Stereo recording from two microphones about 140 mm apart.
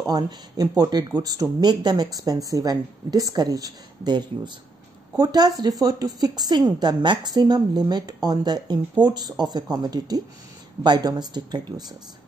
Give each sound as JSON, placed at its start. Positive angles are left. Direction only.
{"t": 0.0, "sound": "speech", "side_deg": -30}